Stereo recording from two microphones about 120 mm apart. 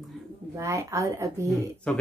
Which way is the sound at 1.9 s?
10° left (ahead or behind).